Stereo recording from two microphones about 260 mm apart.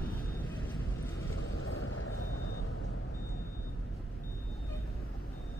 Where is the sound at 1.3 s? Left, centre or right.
Left.